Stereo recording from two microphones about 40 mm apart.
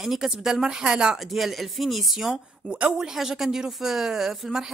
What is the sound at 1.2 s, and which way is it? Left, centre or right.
Speech, centre.